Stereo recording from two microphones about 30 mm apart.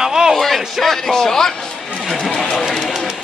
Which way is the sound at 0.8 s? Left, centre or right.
Centre.